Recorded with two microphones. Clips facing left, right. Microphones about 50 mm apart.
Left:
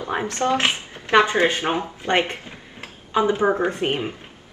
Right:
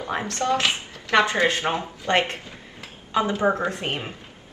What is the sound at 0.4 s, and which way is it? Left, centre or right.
A woman's voice, left.